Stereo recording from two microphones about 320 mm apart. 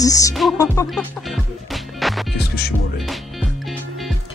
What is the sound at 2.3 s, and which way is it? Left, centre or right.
Music, left.